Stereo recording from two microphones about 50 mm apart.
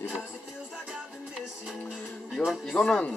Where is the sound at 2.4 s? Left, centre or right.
Left.